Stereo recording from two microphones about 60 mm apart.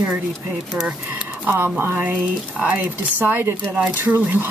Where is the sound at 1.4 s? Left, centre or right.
Right.